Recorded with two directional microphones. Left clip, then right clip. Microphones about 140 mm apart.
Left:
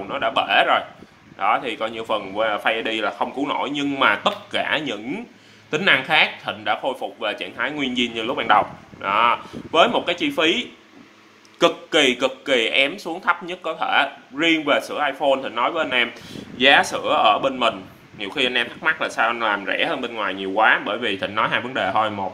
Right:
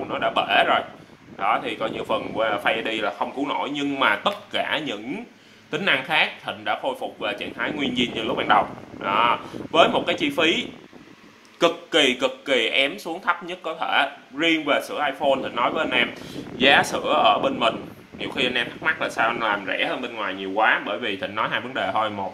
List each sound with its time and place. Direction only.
0.1 s speech: centre (ahead or behind)